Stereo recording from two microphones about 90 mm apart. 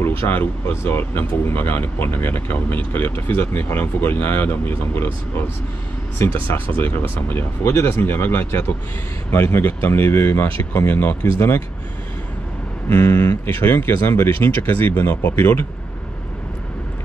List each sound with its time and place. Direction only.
0.0 s speech: 25° left (ahead or behind)
6.1 s speech: 20° left (ahead or behind)
12.9 s speech: 25° left (ahead or behind)